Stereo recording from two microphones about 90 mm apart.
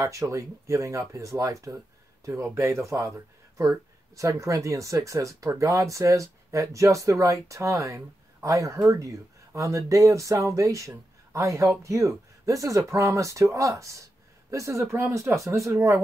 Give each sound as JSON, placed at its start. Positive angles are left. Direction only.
{"t": 0.0, "sound": "speech", "side_deg": -35}